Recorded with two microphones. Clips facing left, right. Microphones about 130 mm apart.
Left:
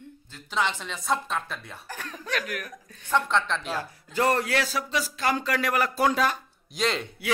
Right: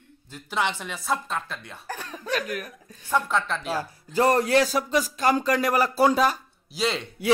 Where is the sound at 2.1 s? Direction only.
35° right (ahead or behind).